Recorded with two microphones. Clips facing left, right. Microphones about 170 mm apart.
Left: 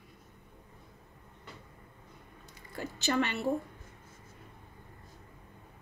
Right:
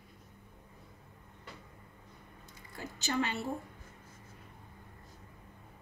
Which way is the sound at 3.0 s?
70° left (ahead or behind).